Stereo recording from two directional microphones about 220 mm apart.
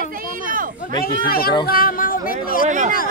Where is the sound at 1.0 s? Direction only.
40° left (ahead or behind).